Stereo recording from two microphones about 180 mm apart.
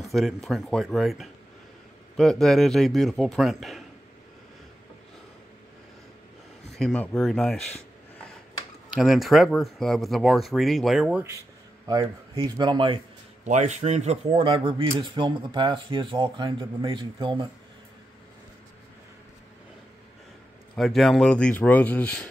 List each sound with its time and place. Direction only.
0.0 s speech: centre (ahead or behind)
6.8 s speech: 5° left (ahead or behind)
8.9 s speech: centre (ahead or behind)
11.9 s speech: 20° right (ahead or behind)
13.4 s speech: 40° right (ahead or behind)
20.7 s speech: centre (ahead or behind)